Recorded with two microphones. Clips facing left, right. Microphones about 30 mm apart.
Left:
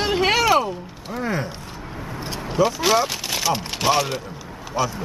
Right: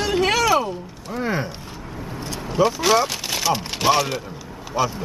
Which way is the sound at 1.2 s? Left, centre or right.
Centre.